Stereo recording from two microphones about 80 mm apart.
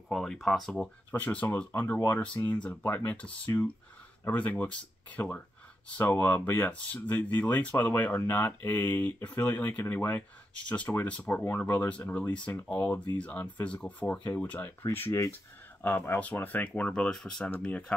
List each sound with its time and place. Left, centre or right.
0.1 s speech: centre
1.1 s speech: centre
17.6 s speech: centre